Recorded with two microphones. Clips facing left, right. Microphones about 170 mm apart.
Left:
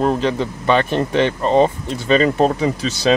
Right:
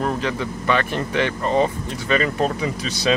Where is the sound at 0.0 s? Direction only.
25° left (ahead or behind).